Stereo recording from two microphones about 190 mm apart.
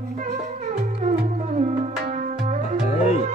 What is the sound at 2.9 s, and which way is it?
Music, 35° left (ahead or behind).